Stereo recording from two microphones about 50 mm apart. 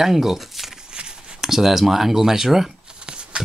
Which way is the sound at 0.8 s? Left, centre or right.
Centre.